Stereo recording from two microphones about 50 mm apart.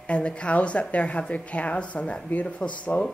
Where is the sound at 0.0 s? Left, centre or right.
Left.